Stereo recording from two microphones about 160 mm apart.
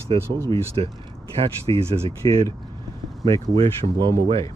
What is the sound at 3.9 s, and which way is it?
Speech, 25° right (ahead or behind).